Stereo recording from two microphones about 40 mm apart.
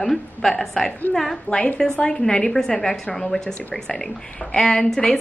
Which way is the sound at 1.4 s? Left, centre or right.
Left.